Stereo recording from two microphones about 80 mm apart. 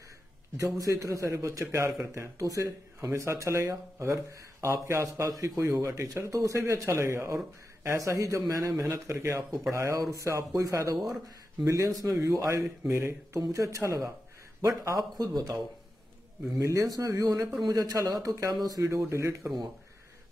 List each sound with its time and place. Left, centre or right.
0.6 s speech: right
9.5 s a man's voice: right
13.4 s a man's voice: right